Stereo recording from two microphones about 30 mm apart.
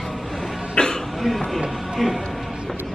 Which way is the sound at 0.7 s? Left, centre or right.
Left.